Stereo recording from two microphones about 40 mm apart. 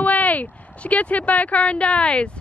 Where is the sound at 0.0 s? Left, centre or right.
Left.